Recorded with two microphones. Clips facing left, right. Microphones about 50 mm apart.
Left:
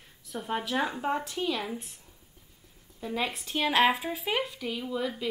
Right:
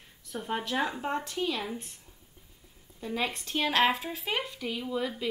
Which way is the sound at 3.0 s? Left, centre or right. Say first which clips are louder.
Even; centre.